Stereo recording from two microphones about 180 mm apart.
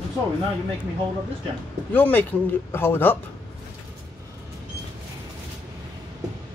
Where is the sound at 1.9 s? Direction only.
10° left (ahead or behind).